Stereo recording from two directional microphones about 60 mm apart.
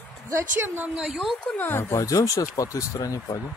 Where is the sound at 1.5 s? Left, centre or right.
Left.